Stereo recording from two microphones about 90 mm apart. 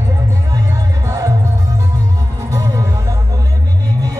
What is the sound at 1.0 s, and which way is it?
Music, 40° right (ahead or behind).